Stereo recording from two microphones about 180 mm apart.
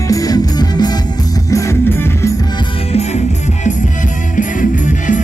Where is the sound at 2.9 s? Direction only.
40° left (ahead or behind).